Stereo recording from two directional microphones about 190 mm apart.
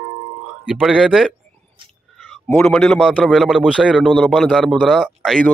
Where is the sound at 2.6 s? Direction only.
5° left (ahead or behind).